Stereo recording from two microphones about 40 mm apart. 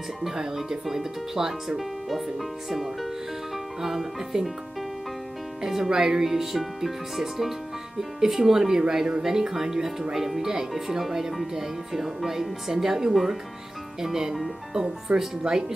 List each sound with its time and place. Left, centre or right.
0.2 s speech: centre
5.6 s speech: centre